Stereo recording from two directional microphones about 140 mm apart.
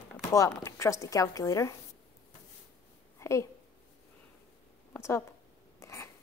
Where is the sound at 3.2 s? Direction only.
20° left (ahead or behind).